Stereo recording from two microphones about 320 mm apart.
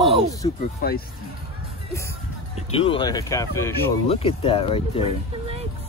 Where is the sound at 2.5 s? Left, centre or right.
Centre.